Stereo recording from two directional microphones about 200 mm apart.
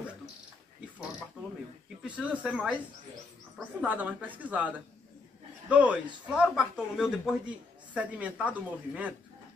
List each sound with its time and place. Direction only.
2.0 s speech: 5° right (ahead or behind)